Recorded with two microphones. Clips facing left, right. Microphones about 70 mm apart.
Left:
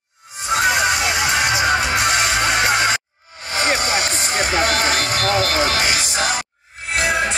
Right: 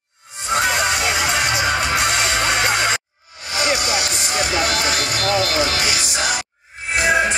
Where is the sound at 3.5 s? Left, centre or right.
Left.